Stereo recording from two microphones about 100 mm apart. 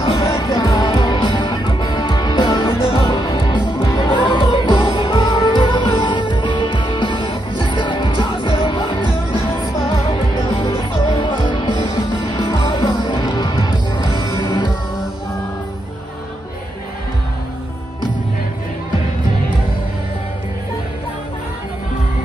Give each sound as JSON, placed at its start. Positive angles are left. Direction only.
{"t": 0.2, "sound": "music", "side_deg": 40}
{"t": 14.2, "sound": "music", "side_deg": 35}